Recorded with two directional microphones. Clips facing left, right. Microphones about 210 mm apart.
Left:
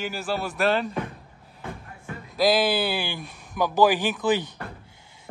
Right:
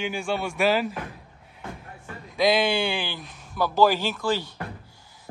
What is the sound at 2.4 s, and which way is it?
Speech, 5° left (ahead or behind).